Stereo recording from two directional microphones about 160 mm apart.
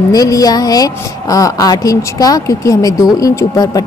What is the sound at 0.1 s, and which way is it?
A woman's voice, 20° left (ahead or behind).